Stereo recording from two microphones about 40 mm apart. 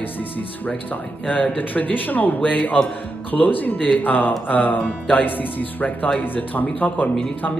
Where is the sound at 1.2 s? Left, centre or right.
Left.